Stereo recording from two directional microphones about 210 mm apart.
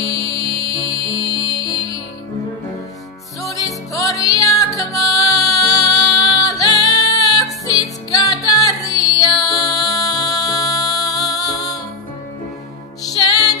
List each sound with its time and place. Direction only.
0.0 s music: 15° left (ahead or behind)
3.4 s music: 15° left (ahead or behind)